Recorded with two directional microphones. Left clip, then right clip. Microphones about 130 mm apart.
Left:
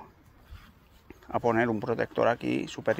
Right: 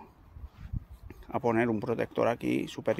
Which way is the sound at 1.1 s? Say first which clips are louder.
Left 2 dB; 15° right (ahead or behind).